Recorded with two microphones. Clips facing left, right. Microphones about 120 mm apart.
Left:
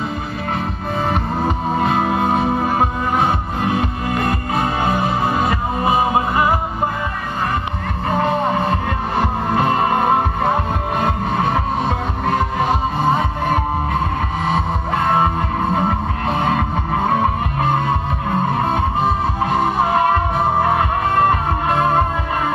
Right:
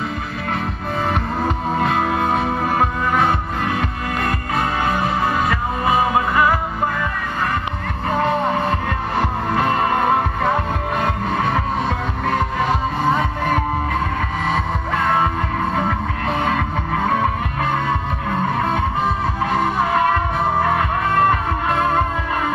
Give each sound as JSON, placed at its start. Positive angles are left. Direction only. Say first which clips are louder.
{"t": 1.1, "sound": "music", "louder": "left 1 dB", "side_deg": 30}
{"t": 8.2, "sound": "music", "louder": "left 1 dB", "side_deg": 30}
{"t": 15.0, "sound": "music", "louder": "left 2 dB", "side_deg": 30}